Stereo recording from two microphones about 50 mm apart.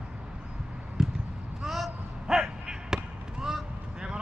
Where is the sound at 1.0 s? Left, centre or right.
Centre.